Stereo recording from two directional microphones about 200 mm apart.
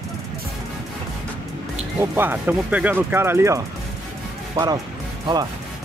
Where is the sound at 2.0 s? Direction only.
10° right (ahead or behind).